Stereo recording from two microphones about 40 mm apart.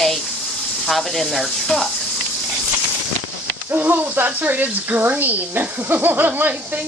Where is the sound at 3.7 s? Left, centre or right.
Right.